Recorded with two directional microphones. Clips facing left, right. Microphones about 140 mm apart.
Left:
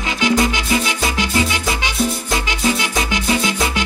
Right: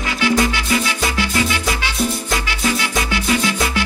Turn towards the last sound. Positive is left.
turn(degrees=20)  # may be behind; listen again after turning